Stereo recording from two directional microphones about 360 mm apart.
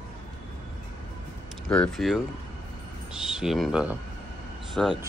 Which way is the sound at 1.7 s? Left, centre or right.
Centre.